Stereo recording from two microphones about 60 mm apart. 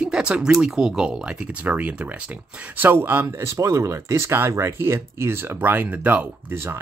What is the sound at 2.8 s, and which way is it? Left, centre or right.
Speech, right.